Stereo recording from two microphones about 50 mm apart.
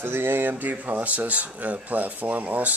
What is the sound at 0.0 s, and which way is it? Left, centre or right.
Speech, right.